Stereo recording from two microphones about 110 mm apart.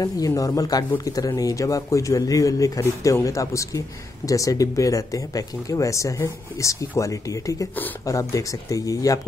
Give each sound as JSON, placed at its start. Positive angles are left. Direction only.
{"t": 0.3, "sound": "a man's voice", "side_deg": 35}